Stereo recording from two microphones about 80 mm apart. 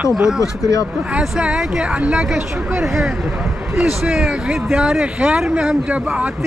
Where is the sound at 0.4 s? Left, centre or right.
Left.